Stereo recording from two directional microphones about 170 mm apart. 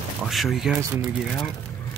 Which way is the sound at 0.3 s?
Centre (ahead or behind).